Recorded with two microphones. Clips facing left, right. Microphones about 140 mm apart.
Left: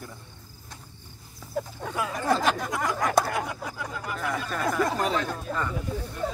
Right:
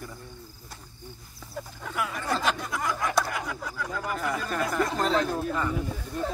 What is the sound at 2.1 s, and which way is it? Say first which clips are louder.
Speech: left 5 dB; 45° left (ahead or behind).